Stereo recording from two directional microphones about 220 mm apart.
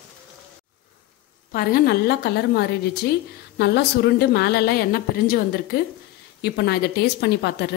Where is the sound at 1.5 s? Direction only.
45° left (ahead or behind).